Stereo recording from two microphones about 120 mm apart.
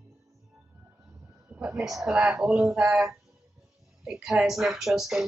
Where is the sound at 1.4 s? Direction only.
10° right (ahead or behind).